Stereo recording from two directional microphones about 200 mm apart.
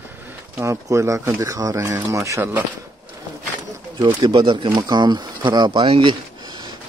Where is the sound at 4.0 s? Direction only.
20° right (ahead or behind).